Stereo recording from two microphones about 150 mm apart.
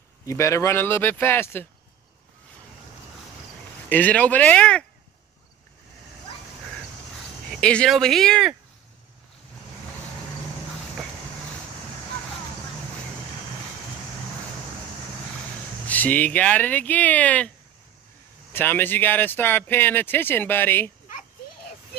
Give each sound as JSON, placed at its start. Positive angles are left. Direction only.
{"t": 0.3, "sound": "speech", "side_deg": 20}
{"t": 3.9, "sound": "speech", "side_deg": 10}
{"t": 7.5, "sound": "speech", "side_deg": 5}
{"t": 15.9, "sound": "speech", "side_deg": 10}
{"t": 18.5, "sound": "speech", "side_deg": 15}